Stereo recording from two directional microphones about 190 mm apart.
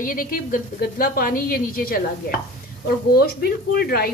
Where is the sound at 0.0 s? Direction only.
45° left (ahead or behind).